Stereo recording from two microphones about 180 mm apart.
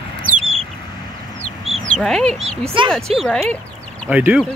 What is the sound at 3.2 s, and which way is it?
Speech, 5° left (ahead or behind).